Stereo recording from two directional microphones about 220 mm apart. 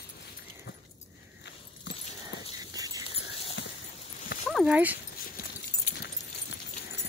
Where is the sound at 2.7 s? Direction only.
15° right (ahead or behind).